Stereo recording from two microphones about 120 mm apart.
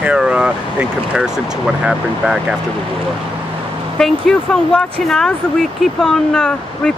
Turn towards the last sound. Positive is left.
turn(degrees=5)  # may be behind; listen again after turning